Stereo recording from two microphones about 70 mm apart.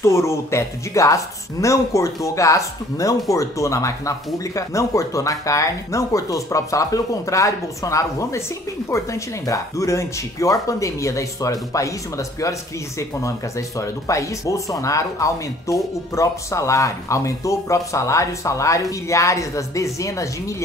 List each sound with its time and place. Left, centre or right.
0.0 s speech: left